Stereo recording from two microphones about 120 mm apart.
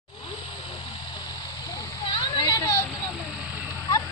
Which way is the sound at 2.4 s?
30° left (ahead or behind).